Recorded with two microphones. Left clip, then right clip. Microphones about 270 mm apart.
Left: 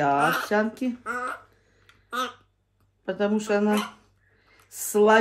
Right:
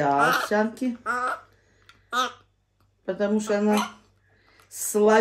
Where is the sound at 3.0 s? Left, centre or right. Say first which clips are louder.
Even; centre.